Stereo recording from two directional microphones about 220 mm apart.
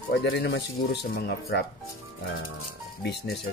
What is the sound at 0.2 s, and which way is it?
Speech, 50° left (ahead or behind).